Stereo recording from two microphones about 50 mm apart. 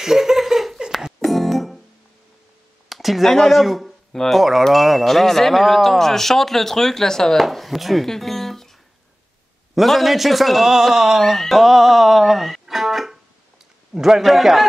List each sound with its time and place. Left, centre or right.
0.0 s laughter: centre
1.2 s music: centre
2.9 s a sound: centre
3.3 s speech: centre
7.4 s speech: centre
9.8 s speech: centre